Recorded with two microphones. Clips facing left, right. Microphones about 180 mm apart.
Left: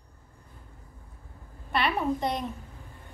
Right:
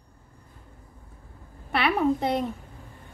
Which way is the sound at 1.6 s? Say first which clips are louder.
Right 3 dB; 65° right (ahead or behind).